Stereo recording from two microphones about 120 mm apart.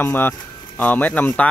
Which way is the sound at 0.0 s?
15° left (ahead or behind).